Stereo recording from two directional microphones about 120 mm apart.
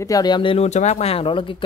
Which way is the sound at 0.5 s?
70° left (ahead or behind).